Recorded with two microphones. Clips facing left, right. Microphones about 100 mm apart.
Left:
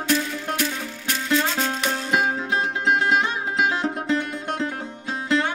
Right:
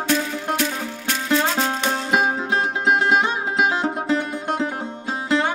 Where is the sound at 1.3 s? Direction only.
35° right (ahead or behind).